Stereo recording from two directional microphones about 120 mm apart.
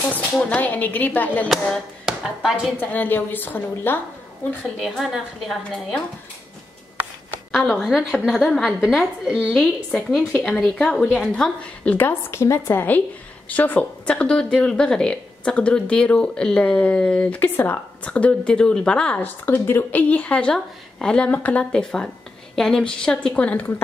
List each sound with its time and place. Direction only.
0.4 s speech: 10° left (ahead or behind)
1.5 s speech: centre (ahead or behind)
2.8 s speech: 15° left (ahead or behind)
4.7 s a woman's voice: centre (ahead or behind)
7.5 s a woman's voice: 5° right (ahead or behind)
9.5 s speech: 10° left (ahead or behind)